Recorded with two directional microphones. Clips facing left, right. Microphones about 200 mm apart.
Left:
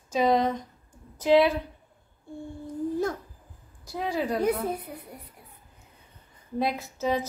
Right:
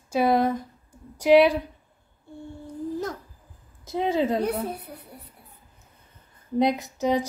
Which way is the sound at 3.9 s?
20° right (ahead or behind).